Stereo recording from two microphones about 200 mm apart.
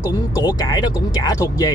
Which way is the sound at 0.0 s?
20° left (ahead or behind).